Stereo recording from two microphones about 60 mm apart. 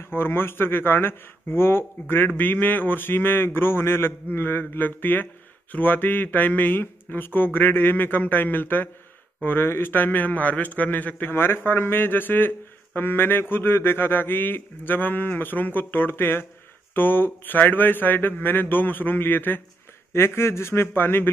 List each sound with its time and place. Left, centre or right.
0.1 s a man's voice: left
11.3 s speech: left
20.1 s speech: left